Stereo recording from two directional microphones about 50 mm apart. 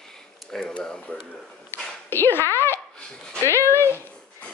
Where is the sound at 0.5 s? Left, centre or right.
Centre.